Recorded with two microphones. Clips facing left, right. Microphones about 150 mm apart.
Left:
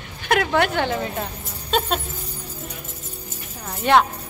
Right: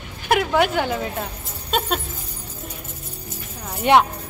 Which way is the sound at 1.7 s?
5° right (ahead or behind).